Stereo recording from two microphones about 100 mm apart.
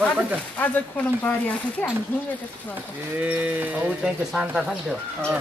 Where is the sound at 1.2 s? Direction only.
15° left (ahead or behind).